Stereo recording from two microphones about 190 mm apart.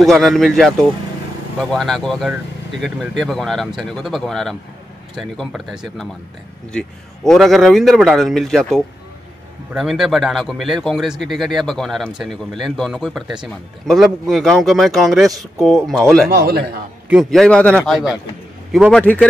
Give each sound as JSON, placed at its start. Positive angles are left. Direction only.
{"t": 0.0, "sound": "speech", "side_deg": 0}
{"t": 16.3, "sound": "a man's voice", "side_deg": -55}
{"t": 17.1, "sound": "speech", "side_deg": 0}